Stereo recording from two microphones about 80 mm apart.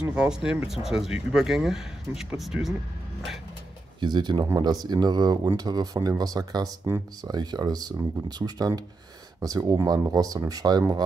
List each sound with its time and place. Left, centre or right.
0.0 s speech: centre
4.0 s speech: right
4.6 s speech: right